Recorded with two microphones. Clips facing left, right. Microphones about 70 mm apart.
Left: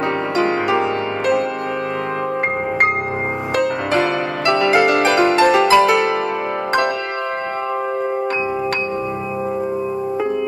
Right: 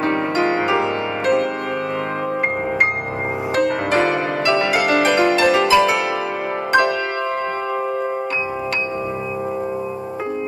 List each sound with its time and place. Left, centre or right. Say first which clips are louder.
3.5 s music: even; right
4.8 s music: left 1 dB; left